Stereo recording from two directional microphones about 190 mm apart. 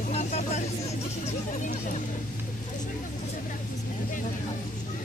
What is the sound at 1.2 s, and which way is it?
Speech, 40° left (ahead or behind).